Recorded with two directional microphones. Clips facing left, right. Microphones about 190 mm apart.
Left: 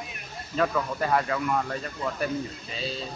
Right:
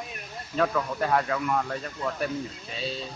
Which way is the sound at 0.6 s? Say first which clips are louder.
Even; centre (ahead or behind).